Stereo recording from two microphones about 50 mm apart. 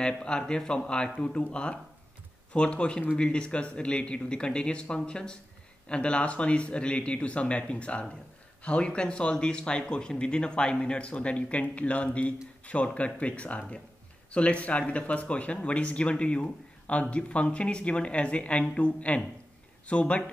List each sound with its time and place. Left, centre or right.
0.2 s speech: centre